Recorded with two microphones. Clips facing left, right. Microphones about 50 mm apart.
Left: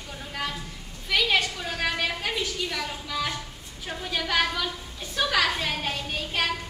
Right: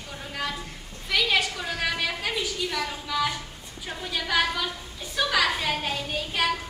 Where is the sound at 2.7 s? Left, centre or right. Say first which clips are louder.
Right 2 dB; centre.